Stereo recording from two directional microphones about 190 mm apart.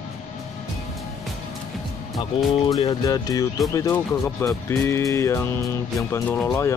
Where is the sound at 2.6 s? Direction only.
20° left (ahead or behind).